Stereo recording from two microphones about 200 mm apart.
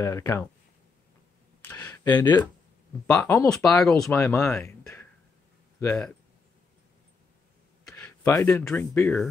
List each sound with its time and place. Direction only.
0.0 s speech: 15° left (ahead or behind)
1.6 s a sound: 10° left (ahead or behind)
3.1 s speech: 10° left (ahead or behind)
7.8 s speech: 10° left (ahead or behind)